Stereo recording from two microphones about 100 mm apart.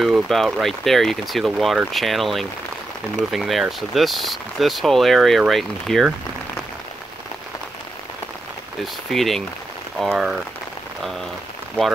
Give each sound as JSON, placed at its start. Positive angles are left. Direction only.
{"t": 0.0, "sound": "speech", "side_deg": 0}
{"t": 9.1, "sound": "speech", "side_deg": 0}